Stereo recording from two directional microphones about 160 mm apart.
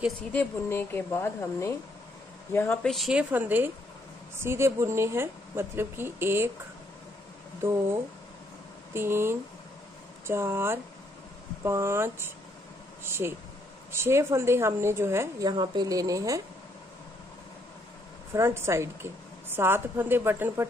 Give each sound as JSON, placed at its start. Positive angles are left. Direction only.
{"t": 0.3, "sound": "a woman's voice", "side_deg": 10}
{"t": 8.9, "sound": "a woman's voice", "side_deg": -15}
{"t": 18.3, "sound": "a woman's voice", "side_deg": -15}